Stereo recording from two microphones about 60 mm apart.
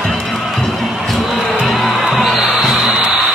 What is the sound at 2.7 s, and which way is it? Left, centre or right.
Music, centre.